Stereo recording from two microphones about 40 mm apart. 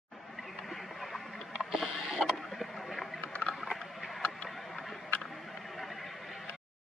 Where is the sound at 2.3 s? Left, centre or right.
Centre.